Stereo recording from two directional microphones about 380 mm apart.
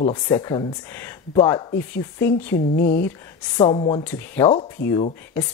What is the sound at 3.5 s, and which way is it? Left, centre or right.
Speech, centre.